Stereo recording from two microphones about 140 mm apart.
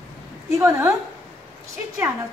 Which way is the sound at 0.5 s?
20° right (ahead or behind).